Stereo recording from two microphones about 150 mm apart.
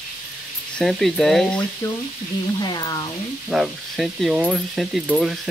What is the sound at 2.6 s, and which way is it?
Speech, 25° left (ahead or behind).